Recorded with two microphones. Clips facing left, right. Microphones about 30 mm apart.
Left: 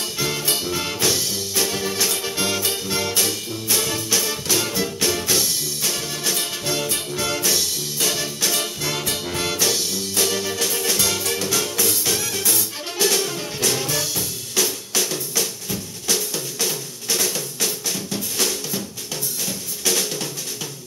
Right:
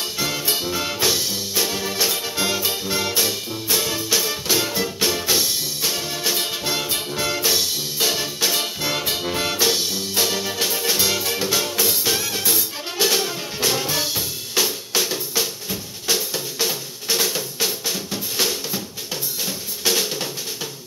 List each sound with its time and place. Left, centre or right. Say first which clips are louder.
0.2 s music: even; centre
19.9 s drum: right 1 dB; centre